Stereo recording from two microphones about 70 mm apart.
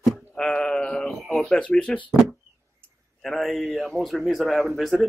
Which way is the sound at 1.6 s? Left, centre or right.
Centre.